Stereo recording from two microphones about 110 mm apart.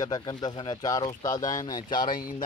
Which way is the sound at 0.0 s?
40° left (ahead or behind).